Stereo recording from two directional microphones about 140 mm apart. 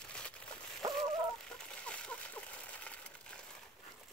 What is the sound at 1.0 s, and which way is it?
Fowl, 5° left (ahead or behind).